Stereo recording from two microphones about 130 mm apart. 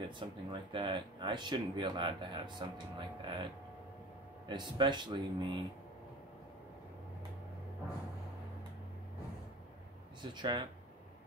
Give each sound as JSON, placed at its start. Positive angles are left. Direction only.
{"t": 0.2, "sound": "speech", "side_deg": -40}
{"t": 4.5, "sound": "speech", "side_deg": -35}
{"t": 10.2, "sound": "speech", "side_deg": -35}